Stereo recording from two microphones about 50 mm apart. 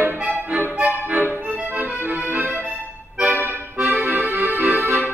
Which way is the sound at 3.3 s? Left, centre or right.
Right.